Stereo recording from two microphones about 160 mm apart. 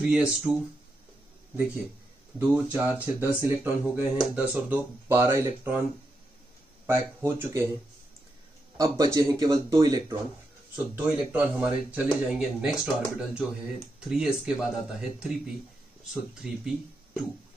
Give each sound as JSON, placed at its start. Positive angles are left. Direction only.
{"t": 0.0, "sound": "speech", "side_deg": -5}
{"t": 2.3, "sound": "speech", "side_deg": -10}
{"t": 6.9, "sound": "speech", "side_deg": -15}
{"t": 8.7, "sound": "speech", "side_deg": -20}
{"t": 10.8, "sound": "speech", "side_deg": -10}